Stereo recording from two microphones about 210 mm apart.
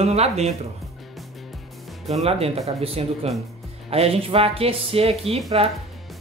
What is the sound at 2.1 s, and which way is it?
Speech, 30° right (ahead or behind).